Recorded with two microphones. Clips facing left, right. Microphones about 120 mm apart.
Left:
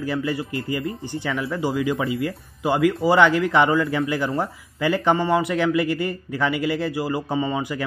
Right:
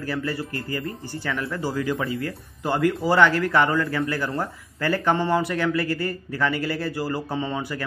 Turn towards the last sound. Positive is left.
turn(degrees=15)  # may be behind; listen again after turning